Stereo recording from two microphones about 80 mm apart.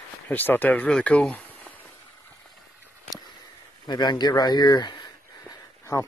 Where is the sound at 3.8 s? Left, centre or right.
Left.